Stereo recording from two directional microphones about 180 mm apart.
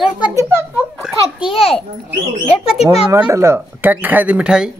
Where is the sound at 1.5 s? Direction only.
30° left (ahead or behind).